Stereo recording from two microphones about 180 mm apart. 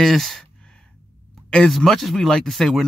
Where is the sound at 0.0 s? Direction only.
Centre (ahead or behind).